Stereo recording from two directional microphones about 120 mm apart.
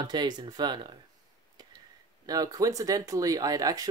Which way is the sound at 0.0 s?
35° right (ahead or behind).